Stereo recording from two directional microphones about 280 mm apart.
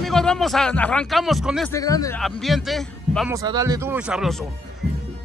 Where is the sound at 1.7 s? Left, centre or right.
Centre.